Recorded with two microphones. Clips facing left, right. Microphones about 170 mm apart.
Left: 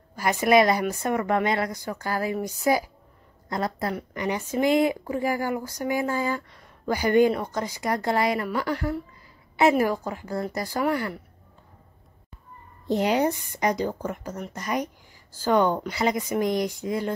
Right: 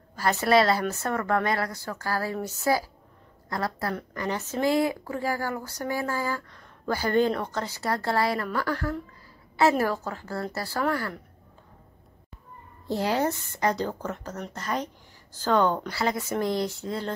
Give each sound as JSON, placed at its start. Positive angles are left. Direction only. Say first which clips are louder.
{"t": 0.1, "sound": "a woman's voice", "louder": "left 2 dB", "side_deg": 15}
{"t": 12.8, "sound": "a woman's voice", "louder": "left 3 dB", "side_deg": 20}